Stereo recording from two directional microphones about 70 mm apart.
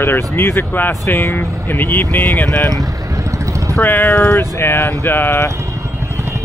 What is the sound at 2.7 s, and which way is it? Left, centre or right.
Boat, right.